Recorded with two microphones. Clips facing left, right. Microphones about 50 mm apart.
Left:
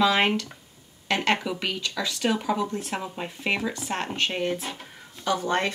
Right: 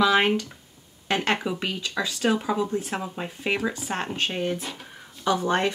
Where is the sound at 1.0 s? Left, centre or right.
Centre.